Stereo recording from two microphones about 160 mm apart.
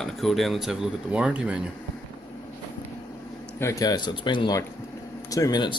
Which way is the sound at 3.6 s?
20° left (ahead or behind).